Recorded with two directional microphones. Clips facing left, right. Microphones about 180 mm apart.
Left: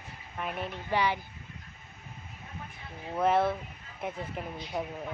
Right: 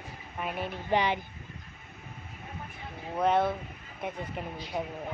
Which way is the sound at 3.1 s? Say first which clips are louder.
Even; 5° left (ahead or behind).